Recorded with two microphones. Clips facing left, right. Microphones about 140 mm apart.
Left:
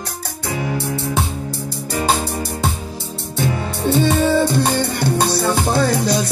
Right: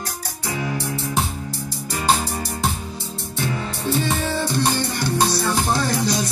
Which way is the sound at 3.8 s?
65° left (ahead or behind).